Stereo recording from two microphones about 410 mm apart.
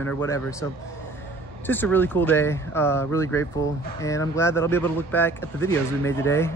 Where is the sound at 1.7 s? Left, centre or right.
Centre.